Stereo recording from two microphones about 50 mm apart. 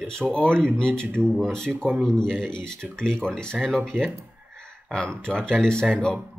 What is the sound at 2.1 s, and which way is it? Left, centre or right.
Speech, centre.